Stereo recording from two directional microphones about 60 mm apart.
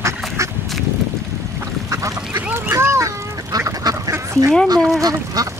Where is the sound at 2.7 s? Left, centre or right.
Right.